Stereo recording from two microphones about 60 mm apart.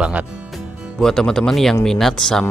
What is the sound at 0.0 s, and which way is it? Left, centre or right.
Speech, right.